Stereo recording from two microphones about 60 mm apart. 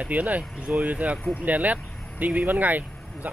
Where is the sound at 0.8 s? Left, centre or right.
Right.